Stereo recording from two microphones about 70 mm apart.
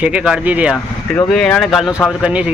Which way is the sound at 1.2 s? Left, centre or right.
Centre.